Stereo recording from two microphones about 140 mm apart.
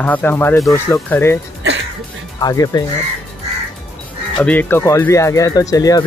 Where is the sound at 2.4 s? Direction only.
25° left (ahead or behind).